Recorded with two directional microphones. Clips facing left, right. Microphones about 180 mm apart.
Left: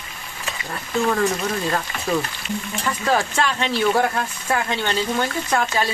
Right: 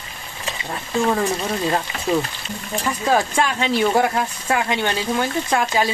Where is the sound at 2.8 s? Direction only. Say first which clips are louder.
Right 2 dB; 15° right (ahead or behind).